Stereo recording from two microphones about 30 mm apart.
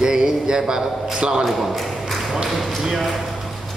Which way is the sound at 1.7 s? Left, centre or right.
Centre.